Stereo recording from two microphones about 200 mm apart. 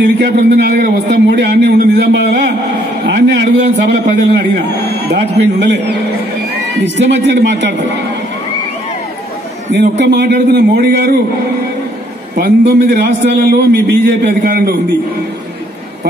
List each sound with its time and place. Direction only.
0.0 s a man's voice: 55° right (ahead or behind)
9.7 s a man's voice: 60° right (ahead or behind)
12.4 s a man's voice: 55° right (ahead or behind)